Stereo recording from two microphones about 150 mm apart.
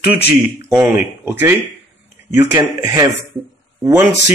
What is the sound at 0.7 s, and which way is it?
Speech, 10° right (ahead or behind).